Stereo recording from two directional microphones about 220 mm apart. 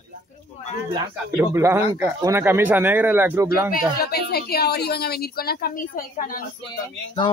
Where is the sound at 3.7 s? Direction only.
45° left (ahead or behind).